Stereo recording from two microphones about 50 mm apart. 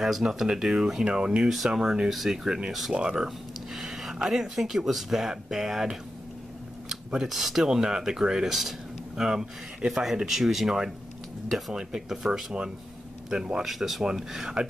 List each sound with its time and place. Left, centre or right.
0.0 s speech: centre
1.0 s speech: centre
1.5 s speech: centre
7.2 s speech: centre